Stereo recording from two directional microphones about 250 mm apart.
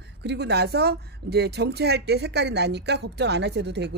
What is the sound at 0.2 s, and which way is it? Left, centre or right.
Speech, right.